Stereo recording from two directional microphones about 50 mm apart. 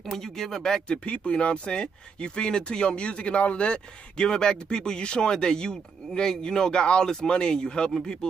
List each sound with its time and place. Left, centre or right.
0.0 s speech: centre